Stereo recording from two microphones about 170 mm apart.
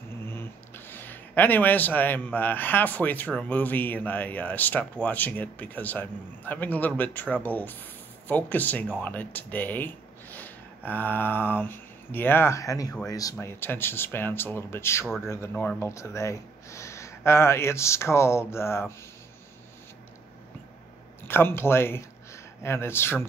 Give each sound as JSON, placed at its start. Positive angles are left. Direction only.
{"t": 0.2, "sound": "speech", "side_deg": 15}
{"t": 21.3, "sound": "speech", "side_deg": 15}